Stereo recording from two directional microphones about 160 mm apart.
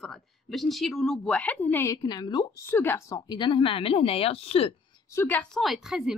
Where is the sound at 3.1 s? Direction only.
25° left (ahead or behind).